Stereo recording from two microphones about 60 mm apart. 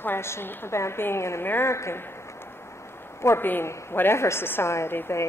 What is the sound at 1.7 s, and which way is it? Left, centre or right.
Speech, left.